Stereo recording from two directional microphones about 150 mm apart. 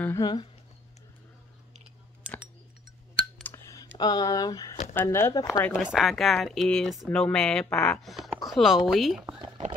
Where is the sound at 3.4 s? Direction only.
20° left (ahead or behind).